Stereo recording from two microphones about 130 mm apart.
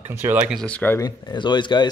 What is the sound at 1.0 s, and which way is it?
Speech, 35° left (ahead or behind).